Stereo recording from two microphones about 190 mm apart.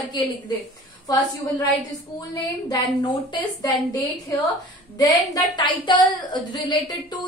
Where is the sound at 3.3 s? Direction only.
20° left (ahead or behind).